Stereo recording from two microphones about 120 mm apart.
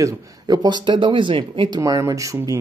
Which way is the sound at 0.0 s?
35° right (ahead or behind).